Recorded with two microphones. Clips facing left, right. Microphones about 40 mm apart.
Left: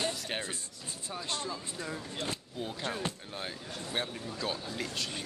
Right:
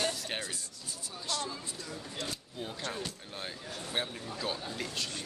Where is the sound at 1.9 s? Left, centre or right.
Left.